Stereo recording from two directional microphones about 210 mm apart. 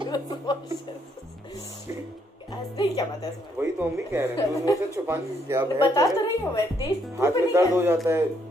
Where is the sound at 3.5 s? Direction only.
5° right (ahead or behind).